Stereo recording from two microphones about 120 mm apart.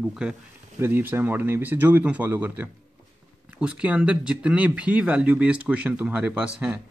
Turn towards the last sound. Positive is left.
turn(degrees=-10)  # may be behind; listen again after turning